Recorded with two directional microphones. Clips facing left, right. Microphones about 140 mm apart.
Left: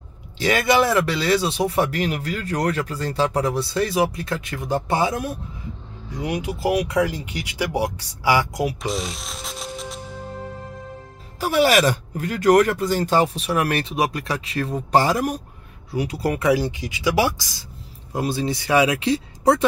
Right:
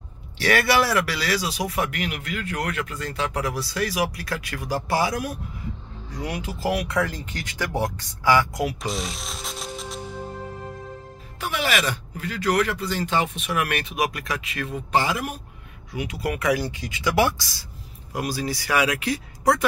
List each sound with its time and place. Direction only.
0.4 s speech: 20° left (ahead or behind)
8.8 s music: centre (ahead or behind)
11.3 s speech: 35° left (ahead or behind)